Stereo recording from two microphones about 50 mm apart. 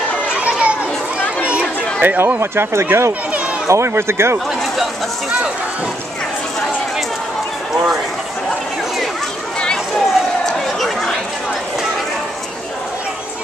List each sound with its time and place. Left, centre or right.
0.4 s children playing: right
1.4 s chatter: right
2.0 s speech: right
10.8 s chatter: centre